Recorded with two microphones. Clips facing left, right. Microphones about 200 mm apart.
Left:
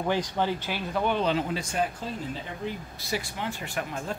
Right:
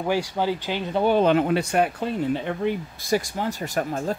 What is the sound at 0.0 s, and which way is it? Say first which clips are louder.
Speech: right 3 dB; 10° right (ahead or behind).